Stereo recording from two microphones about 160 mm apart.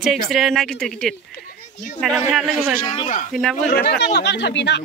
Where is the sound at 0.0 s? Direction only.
Centre (ahead or behind).